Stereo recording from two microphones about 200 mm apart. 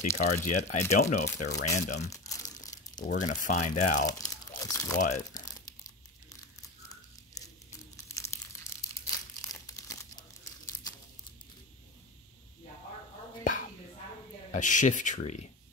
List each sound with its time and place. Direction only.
0.2 s speech: 40° left (ahead or behind)
2.0 s crumpling: 15° left (ahead or behind)
3.2 s speech: 40° left (ahead or behind)
4.0 s crumpling: 20° left (ahead or behind)
4.9 s speech: 40° left (ahead or behind)
8.2 s crumpling: 15° left (ahead or behind)
14.5 s speech: 40° left (ahead or behind)